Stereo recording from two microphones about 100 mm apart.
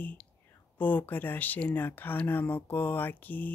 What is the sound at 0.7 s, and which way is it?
Speech, 20° left (ahead or behind).